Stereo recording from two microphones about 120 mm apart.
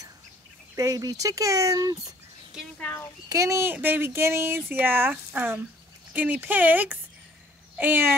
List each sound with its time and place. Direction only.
0.7 s speech: 30° right (ahead or behind)
2.8 s a child's voice: 15° left (ahead or behind)
3.3 s speech: 25° right (ahead or behind)
7.7 s a sound: 15° right (ahead or behind)